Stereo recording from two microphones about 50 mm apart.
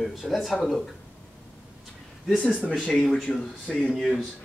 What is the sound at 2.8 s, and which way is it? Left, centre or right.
Speech, centre.